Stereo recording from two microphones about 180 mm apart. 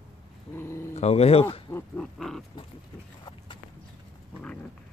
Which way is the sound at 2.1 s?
Centre (ahead or behind).